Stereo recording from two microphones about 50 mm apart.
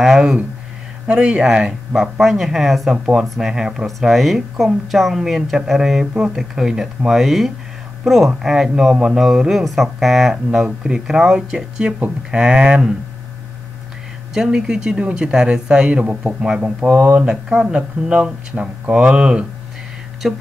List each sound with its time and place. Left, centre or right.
0.0 s speech: centre
1.0 s speech: right
1.4 s speech: centre
2.9 s speech: centre
4.1 s speech: centre; by 12.9 s right
14.3 s speech: centre
16.9 s speech: right
17.2 s speech: centre
20.2 s speech: centre